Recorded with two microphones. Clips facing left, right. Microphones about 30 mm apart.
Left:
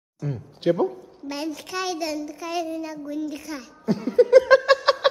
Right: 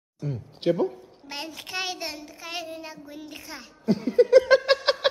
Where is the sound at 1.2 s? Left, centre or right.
Centre.